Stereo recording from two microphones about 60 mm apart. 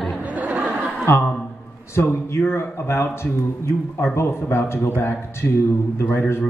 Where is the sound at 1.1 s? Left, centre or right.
Left.